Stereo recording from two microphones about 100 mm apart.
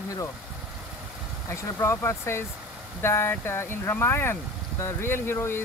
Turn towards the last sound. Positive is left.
turn(degrees=25)  # may be behind; listen again after turning